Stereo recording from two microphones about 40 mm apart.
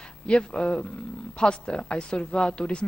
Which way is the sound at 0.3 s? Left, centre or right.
Left.